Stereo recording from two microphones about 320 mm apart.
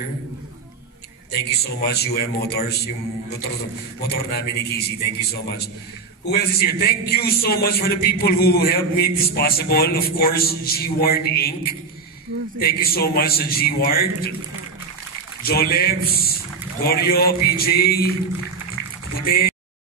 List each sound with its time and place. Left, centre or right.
1.4 s a man's voice: left
4.0 s a man's voice: left
12.5 s a man's voice: left
15.4 s a man's voice: left
19.1 s speech: left